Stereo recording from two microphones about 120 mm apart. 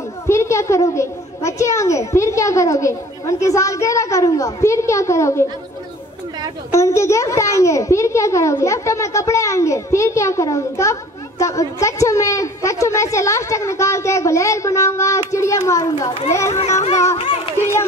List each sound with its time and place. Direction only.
0.3 s a child's voice: 25° left (ahead or behind)
6.7 s a child's voice: 25° left (ahead or behind)
16.8 s speech: 65° left (ahead or behind)